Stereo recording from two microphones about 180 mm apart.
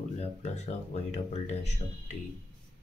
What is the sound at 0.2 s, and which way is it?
Speech, 40° left (ahead or behind).